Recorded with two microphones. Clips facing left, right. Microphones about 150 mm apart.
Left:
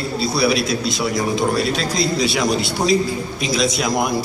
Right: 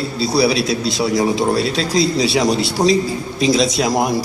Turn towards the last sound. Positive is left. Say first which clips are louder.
# right 3 dB
turn(degrees=-35)  # may be behind; listen again after turning